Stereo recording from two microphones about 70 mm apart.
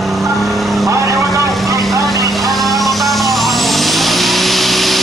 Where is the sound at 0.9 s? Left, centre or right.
Right.